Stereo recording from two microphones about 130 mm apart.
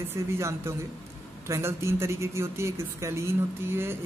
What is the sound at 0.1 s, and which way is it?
Speech, 20° right (ahead or behind).